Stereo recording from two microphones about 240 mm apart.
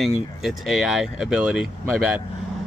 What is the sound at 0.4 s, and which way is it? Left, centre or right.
Speech, centre.